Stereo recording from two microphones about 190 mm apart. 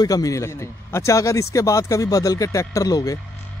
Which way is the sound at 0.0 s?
20° left (ahead or behind).